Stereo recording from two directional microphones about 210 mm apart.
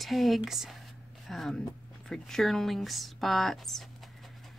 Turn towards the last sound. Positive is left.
turn(degrees=0)  # may be behind; listen again after turning